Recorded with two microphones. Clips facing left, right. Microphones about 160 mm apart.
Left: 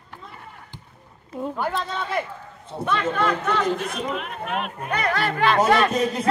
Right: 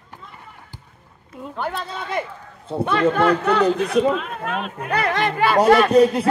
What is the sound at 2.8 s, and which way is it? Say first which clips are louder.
Speech: right 5 dB; 30° right (ahead or behind).